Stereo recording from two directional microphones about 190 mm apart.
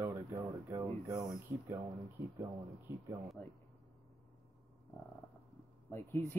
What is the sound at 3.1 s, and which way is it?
Speech, 15° right (ahead or behind).